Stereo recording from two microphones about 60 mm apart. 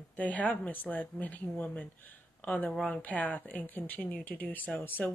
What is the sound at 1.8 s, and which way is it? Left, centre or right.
Speech, left.